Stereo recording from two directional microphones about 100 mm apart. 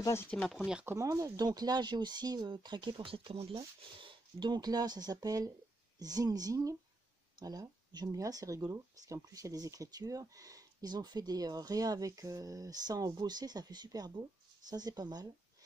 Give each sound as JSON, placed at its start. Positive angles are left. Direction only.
{"t": 0.0, "sound": "speech", "side_deg": 25}
{"t": 0.8, "sound": "speech", "side_deg": -30}